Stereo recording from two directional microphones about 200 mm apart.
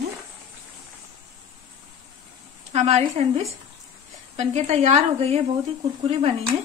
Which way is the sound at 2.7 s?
35° right (ahead or behind).